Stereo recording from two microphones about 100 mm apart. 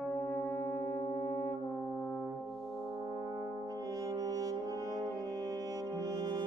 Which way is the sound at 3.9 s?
35° right (ahead or behind).